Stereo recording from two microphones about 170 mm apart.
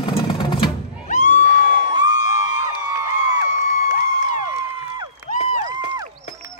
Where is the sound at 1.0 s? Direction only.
50° left (ahead or behind).